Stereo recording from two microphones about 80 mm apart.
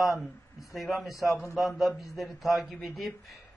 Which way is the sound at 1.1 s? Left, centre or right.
Left.